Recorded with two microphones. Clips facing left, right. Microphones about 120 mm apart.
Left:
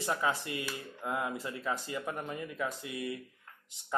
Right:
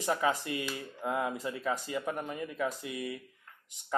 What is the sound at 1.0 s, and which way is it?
Speech, 20° right (ahead or behind).